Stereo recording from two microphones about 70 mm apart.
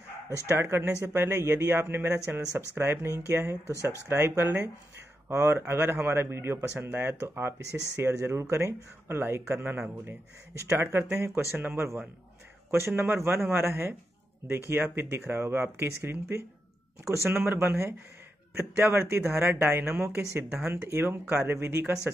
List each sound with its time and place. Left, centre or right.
0.5 s speech: right
10.8 s speech: right
11.5 s speech: right